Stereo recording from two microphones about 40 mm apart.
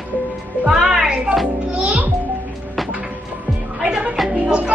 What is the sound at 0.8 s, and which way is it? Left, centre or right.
Music, right.